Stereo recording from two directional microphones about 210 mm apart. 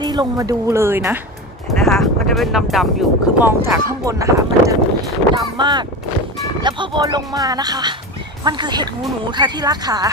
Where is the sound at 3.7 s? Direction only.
15° right (ahead or behind).